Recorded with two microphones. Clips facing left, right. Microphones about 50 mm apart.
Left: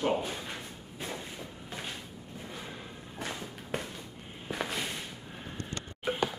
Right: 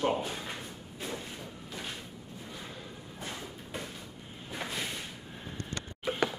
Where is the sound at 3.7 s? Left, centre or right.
Left.